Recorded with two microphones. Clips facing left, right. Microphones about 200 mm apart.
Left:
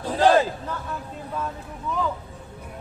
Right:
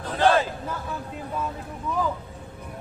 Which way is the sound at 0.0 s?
10° left (ahead or behind).